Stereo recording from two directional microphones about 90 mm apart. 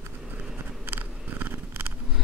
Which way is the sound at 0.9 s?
20° right (ahead or behind).